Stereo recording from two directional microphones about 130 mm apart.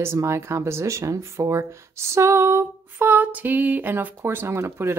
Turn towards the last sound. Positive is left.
turn(degrees=-20)  # may be behind; listen again after turning